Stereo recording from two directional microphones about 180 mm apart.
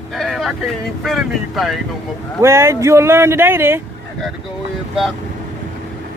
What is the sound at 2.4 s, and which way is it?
Speech, 15° right (ahead or behind).